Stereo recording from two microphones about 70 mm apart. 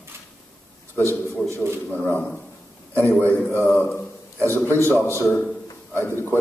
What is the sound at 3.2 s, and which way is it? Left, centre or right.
Speech, left.